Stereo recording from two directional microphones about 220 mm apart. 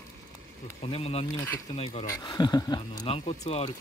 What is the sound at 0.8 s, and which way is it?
Speech, 25° left (ahead or behind).